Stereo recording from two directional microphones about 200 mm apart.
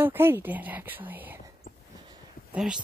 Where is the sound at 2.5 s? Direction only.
5° right (ahead or behind).